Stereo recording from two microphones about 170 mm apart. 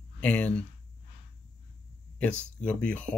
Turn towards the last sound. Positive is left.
turn(degrees=5)  # may be behind; listen again after turning